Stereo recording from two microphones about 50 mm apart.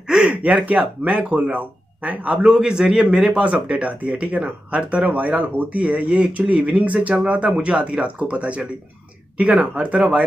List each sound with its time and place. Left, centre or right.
0.1 s gasp: centre
0.5 s a man's voice: right
2.4 s a man's voice: centre